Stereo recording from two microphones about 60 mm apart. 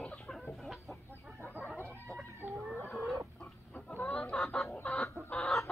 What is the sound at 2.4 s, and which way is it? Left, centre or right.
Chicken, right.